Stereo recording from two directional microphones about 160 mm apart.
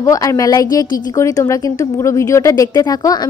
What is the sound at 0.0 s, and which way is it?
A woman's voice, 20° left (ahead or behind).